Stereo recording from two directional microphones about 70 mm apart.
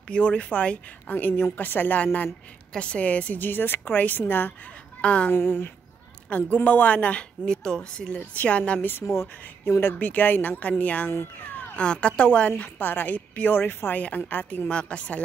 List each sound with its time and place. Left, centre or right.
0.1 s a woman's voice: centre
2.7 s a woman's voice: centre; by 4.6 s left
5.0 s a woman's voice: centre
5.3 s speech: left
6.3 s a woman's voice: left
9.0 s speech: left
9.9 s a woman's voice: left
11.1 s speech: left
11.6 s a woman's voice: centre